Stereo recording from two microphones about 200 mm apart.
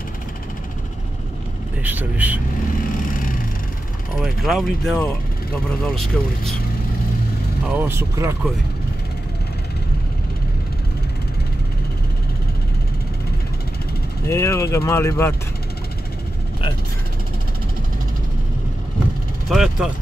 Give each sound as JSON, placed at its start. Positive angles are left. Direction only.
{"t": 1.8, "sound": "speech", "side_deg": -10}
{"t": 2.7, "sound": "vehicle", "side_deg": 45}
{"t": 4.2, "sound": "speech", "side_deg": 0}
{"t": 7.6, "sound": "speech", "side_deg": -10}
{"t": 14.2, "sound": "speech", "side_deg": 15}
{"t": 19.5, "sound": "speech", "side_deg": 0}